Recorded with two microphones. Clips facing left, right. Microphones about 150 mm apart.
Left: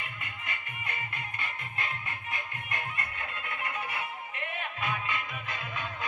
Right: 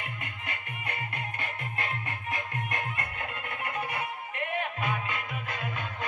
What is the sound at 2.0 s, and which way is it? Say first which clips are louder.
Music: right 4 dB; 90° right.